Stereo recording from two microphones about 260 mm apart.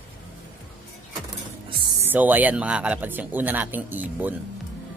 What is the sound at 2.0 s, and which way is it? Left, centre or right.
Speech, centre.